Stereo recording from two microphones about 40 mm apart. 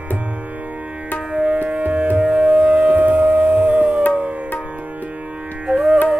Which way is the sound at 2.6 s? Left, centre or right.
Right.